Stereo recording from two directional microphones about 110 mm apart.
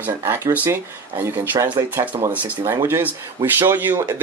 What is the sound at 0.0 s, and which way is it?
Speech, 20° right (ahead or behind).